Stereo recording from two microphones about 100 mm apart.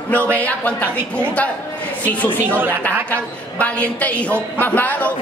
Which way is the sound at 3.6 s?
15° left (ahead or behind).